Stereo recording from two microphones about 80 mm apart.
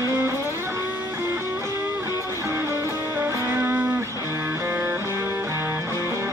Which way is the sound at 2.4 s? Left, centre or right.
Right.